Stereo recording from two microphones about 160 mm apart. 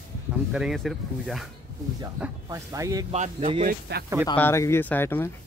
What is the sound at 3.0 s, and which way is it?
Speech, 45° right (ahead or behind).